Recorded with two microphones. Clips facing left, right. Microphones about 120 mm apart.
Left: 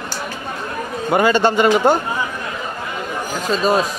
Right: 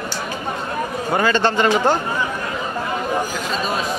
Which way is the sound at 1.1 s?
15° left (ahead or behind).